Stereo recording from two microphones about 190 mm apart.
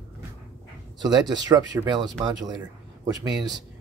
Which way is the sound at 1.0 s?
20° right (ahead or behind).